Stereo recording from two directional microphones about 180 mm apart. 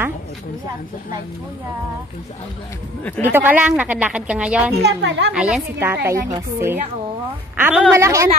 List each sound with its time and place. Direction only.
3.0 s speech: 10° left (ahead or behind)
3.3 s a woman's voice: 10° right (ahead or behind)
4.8 s a woman's voice: 65° right (ahead or behind)
5.3 s a woman's voice: 5° right (ahead or behind)